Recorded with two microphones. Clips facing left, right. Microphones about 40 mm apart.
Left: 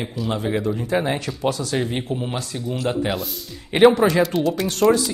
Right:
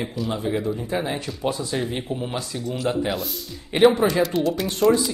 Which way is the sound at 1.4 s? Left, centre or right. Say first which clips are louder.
Left 2 dB; left.